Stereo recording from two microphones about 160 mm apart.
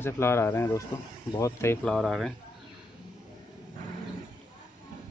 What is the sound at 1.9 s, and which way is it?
Speech, centre (ahead or behind).